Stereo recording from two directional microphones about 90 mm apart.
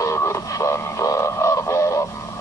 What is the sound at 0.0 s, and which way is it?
Music, 35° left (ahead or behind).